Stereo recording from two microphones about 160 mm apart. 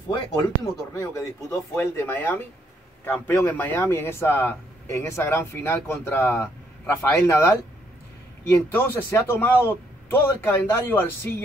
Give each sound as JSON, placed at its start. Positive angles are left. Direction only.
{"t": 0.9, "sound": "speech", "side_deg": 20}